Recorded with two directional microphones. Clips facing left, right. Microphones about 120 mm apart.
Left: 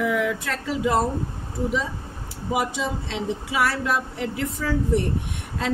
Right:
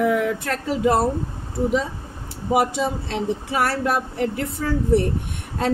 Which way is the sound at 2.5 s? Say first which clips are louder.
Right 5 dB; 55° right (ahead or behind).